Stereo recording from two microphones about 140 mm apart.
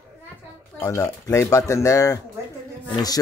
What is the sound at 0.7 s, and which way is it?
Speech, 20° left (ahead or behind).